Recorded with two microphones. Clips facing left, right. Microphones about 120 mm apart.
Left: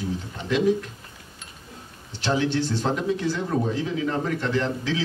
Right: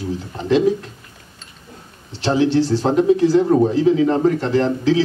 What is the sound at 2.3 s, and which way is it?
Speech, 35° right (ahead or behind).